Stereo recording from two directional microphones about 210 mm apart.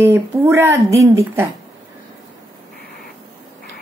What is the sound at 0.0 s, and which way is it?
Speech, 10° right (ahead or behind).